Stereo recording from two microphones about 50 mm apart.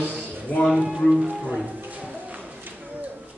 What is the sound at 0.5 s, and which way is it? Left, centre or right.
Speech, left.